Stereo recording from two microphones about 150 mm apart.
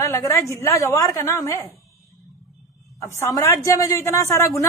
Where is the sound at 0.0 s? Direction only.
20° left (ahead or behind).